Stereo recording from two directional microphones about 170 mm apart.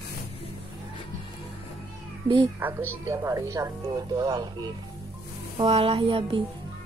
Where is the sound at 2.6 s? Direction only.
15° right (ahead or behind); by 6.4 s 30° right (ahead or behind).